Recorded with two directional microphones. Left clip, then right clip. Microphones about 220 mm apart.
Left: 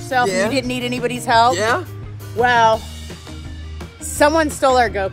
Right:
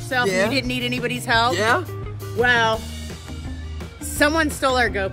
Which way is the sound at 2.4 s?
Centre (ahead or behind).